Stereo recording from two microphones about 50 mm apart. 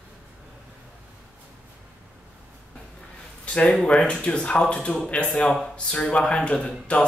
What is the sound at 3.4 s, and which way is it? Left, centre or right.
Speech, left.